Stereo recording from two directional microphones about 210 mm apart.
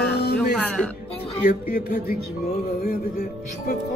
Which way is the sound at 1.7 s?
50° left (ahead or behind).